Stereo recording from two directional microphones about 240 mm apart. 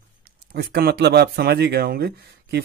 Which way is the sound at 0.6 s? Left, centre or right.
Right.